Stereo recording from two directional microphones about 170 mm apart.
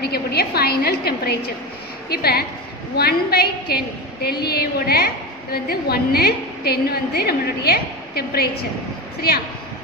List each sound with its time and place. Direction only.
0.0 s a woman's voice: 70° left (ahead or behind)